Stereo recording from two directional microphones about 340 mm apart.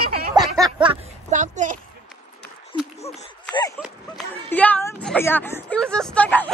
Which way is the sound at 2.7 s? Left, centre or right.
Centre.